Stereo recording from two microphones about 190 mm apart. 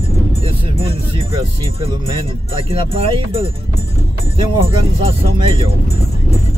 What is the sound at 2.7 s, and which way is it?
Speech, 30° right (ahead or behind).